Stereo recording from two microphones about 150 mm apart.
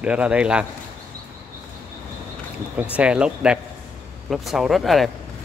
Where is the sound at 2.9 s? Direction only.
5° right (ahead or behind).